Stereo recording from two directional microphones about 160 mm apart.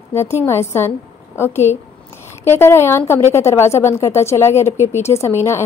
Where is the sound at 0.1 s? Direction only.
15° left (ahead or behind).